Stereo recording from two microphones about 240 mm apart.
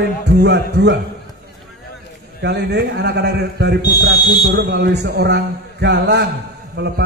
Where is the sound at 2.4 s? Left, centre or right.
Right.